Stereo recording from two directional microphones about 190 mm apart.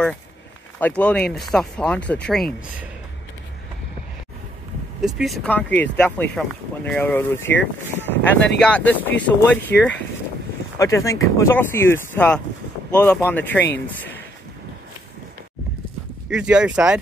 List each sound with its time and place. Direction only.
0.7 s speech: 10° left (ahead or behind)
5.0 s speech: centre (ahead or behind)
16.3 s speech: 5° right (ahead or behind)